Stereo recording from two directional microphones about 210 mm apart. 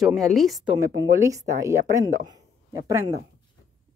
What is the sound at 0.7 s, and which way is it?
Speech, 15° right (ahead or behind).